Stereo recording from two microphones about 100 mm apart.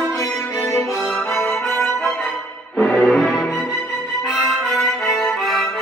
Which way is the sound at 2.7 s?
Centre (ahead or behind).